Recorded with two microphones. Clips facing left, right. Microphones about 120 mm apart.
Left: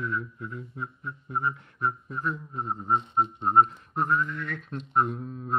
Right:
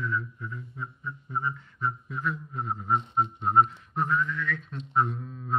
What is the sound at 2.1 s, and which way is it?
A man's voice, 40° left (ahead or behind).